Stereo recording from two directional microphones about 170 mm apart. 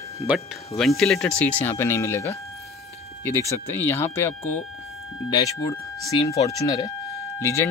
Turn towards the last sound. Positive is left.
turn(degrees=15)  # may be behind; listen again after turning